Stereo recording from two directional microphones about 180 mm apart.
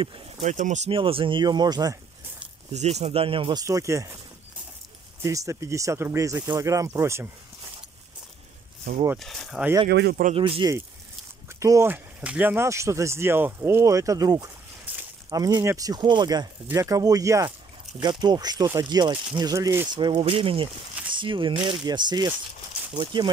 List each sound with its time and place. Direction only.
0.0 s speech: 30° right (ahead or behind)
0.5 s speech: 40° right (ahead or behind); by 2.0 s 20° right (ahead or behind)
2.7 s speech: 40° right (ahead or behind); by 4.2 s 15° right (ahead or behind)
5.2 s speech: 15° right (ahead or behind)
9.2 s speech: centre (ahead or behind)
9.8 s speech: 65° right (ahead or behind)
10.3 s speech: 30° right (ahead or behind)
11.6 s speech: 15° right (ahead or behind)
14.9 s a sound: 10° right (ahead or behind)
15.3 s speech: 20° right (ahead or behind)